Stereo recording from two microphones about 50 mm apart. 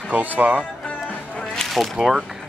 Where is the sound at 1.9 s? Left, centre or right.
Centre.